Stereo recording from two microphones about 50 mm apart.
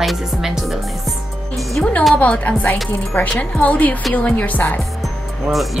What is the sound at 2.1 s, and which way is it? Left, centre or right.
A woman's voice, left.